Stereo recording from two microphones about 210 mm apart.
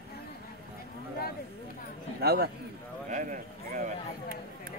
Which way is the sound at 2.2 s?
50° right (ahead or behind).